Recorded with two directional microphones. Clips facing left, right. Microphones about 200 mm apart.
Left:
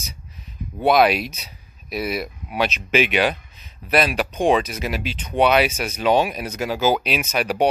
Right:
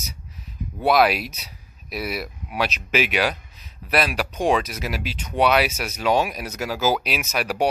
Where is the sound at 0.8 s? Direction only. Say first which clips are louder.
Left 2 dB; centre (ahead or behind).